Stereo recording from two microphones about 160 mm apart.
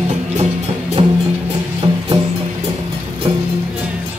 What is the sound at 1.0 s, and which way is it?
Music, 35° right (ahead or behind).